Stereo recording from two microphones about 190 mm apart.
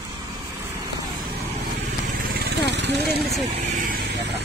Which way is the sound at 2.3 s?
60° right (ahead or behind).